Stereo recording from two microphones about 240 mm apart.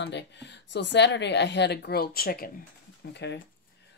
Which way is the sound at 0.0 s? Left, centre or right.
Left.